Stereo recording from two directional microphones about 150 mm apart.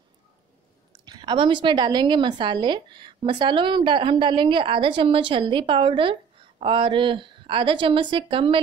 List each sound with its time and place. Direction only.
1.0 s a woman's voice: 30° right (ahead or behind)